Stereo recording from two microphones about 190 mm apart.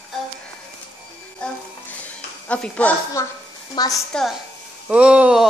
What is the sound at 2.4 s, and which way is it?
Speech, 5° left (ahead or behind).